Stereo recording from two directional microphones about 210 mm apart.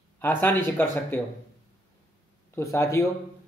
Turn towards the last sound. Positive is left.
turn(degrees=15)  # may be behind; listen again after turning